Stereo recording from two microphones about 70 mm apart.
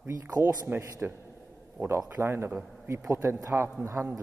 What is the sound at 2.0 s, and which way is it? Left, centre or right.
Speech, right.